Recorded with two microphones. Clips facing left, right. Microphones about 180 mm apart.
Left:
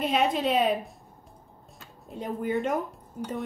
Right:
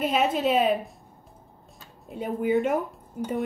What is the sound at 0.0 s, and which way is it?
Speech, centre (ahead or behind).